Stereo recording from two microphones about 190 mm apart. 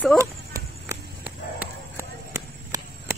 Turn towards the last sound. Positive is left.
turn(degrees=-15)  # may be behind; listen again after turning